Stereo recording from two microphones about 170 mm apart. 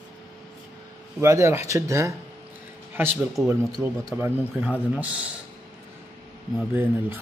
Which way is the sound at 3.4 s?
Centre (ahead or behind).